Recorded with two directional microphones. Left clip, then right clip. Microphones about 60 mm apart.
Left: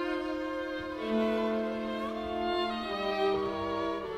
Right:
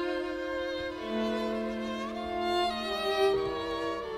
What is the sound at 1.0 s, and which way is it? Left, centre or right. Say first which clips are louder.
Music: left 5 dB; left.